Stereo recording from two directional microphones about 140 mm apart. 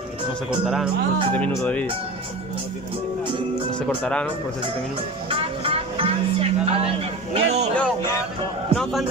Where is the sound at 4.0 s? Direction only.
10° left (ahead or behind).